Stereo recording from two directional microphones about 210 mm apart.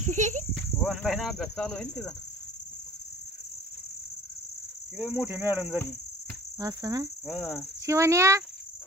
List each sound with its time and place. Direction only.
0.0 s insect: 35° right (ahead or behind)
0.7 s cricket: centre (ahead or behind)
4.9 s cricket: 5° right (ahead or behind)
7.2 s cricket: centre (ahead or behind)
7.8 s cricket: 15° right (ahead or behind)